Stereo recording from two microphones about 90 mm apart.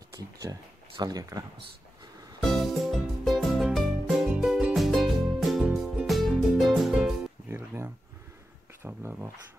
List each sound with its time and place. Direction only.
0.1 s a sound: 40° right (ahead or behind)
1.0 s speech: 45° right (ahead or behind)
2.5 s music: centre (ahead or behind)
7.4 s music: 25° right (ahead or behind)
8.8 s speech: 25° right (ahead or behind)